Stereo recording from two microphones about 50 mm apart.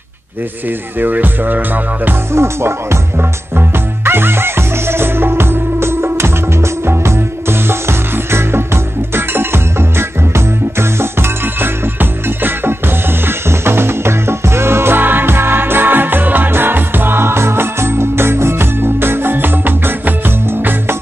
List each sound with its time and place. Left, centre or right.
0.7 s speech: right
2.3 s music: right
3.2 s music: right